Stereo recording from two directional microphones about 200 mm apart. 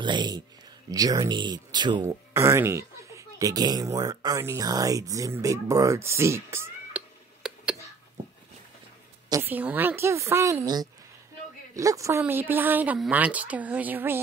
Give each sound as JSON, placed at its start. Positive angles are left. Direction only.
{"t": 0.0, "sound": "speech", "side_deg": -20}
{"t": 7.4, "sound": "a sound", "side_deg": -5}
{"t": 9.3, "sound": "speech", "side_deg": -10}